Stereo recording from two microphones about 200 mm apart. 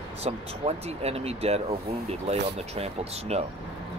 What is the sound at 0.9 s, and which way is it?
Speech, 30° right (ahead or behind).